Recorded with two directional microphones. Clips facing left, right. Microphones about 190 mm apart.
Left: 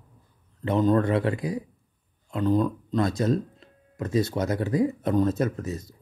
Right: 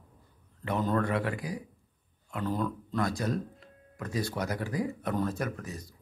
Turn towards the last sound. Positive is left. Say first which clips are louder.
# left 8 dB
turn(degrees=25)  # may be behind; listen again after turning